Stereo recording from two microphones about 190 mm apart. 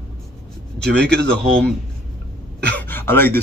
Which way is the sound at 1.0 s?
60° right (ahead or behind).